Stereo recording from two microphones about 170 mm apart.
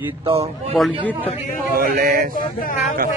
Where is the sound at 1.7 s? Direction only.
60° right (ahead or behind).